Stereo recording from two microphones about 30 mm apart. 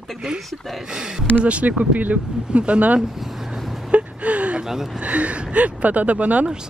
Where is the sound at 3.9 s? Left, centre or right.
Right.